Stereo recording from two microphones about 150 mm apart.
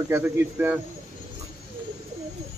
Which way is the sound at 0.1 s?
10° right (ahead or behind).